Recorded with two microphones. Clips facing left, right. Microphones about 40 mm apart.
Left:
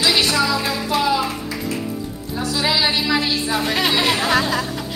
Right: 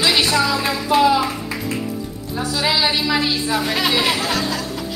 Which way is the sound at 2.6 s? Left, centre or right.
Centre.